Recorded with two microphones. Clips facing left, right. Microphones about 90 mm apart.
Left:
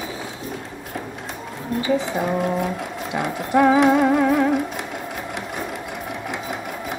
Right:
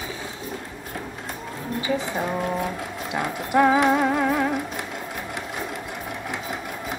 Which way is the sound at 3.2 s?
5° left (ahead or behind).